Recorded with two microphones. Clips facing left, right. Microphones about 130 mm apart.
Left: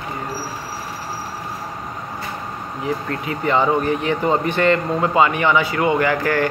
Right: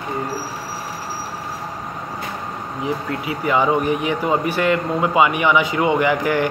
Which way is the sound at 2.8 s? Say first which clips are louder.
Even; 10° right (ahead or behind).